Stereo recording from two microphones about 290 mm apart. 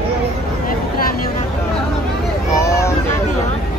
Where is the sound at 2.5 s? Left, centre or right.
Centre.